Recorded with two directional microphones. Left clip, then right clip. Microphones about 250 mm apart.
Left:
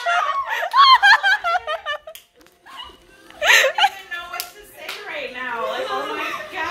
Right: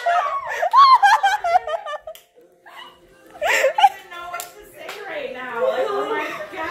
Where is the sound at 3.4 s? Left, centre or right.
Centre.